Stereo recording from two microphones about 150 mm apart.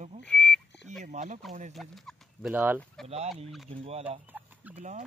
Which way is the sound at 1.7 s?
Centre (ahead or behind).